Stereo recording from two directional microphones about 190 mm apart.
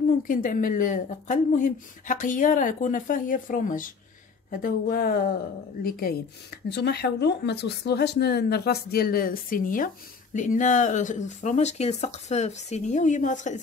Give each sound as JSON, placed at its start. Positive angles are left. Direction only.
{"t": 0.2, "sound": "speech", "side_deg": 45}